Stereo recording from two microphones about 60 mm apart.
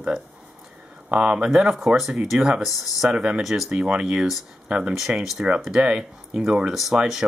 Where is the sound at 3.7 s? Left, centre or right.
Centre.